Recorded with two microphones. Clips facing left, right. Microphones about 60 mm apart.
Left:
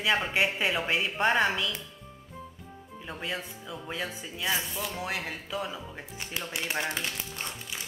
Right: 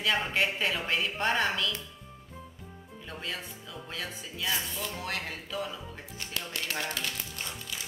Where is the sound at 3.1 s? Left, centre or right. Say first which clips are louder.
Left 3 dB; centre.